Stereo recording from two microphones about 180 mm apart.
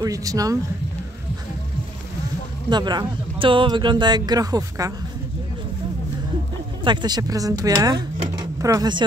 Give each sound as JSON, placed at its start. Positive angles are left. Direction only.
{"t": 0.0, "sound": "speech", "side_deg": -20}
{"t": 2.7, "sound": "speech", "side_deg": -25}
{"t": 6.8, "sound": "speech", "side_deg": -25}